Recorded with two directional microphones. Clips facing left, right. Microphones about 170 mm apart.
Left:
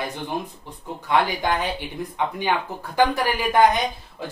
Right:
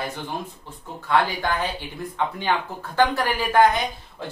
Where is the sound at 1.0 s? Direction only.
15° left (ahead or behind).